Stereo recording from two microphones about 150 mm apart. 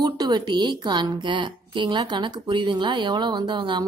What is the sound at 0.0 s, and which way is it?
A woman's voice, 30° right (ahead or behind).